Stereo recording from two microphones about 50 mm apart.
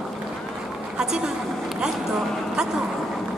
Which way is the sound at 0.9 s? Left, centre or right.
Centre.